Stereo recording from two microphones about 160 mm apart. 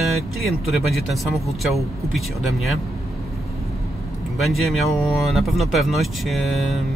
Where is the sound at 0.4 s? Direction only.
Centre (ahead or behind).